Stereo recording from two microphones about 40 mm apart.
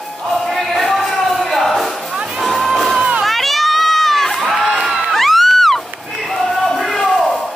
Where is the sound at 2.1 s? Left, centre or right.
Centre.